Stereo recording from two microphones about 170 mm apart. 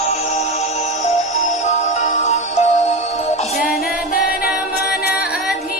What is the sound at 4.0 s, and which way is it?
Music, 55° left (ahead or behind).